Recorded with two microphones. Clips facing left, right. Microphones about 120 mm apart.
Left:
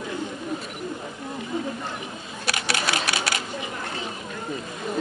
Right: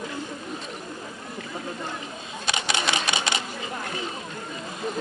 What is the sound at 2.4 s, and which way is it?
Typing, 5° left (ahead or behind).